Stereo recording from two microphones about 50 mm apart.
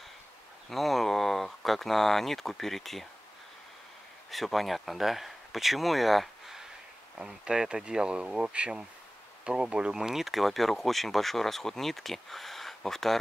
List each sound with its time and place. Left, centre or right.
0.7 s speech: centre
4.3 s speech: centre